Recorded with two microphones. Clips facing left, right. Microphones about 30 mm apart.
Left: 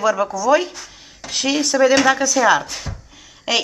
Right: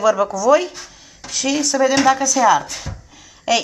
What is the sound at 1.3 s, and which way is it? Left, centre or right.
Speech, left.